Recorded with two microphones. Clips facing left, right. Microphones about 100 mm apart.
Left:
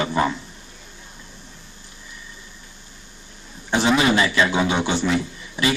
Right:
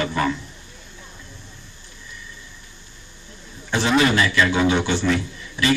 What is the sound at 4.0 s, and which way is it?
A man's voice, 20° left (ahead or behind).